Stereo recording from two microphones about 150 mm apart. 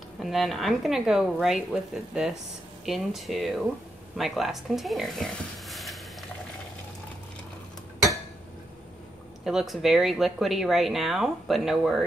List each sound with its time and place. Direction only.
0.2 s speech: centre (ahead or behind)
9.4 s speech: centre (ahead or behind)